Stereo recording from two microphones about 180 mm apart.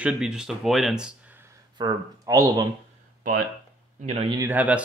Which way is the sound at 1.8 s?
20° right (ahead or behind).